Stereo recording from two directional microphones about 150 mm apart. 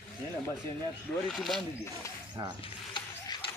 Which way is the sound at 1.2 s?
Centre (ahead or behind).